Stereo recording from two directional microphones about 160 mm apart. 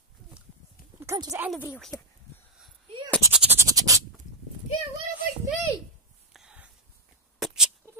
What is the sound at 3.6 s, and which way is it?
Scratch, 20° right (ahead or behind).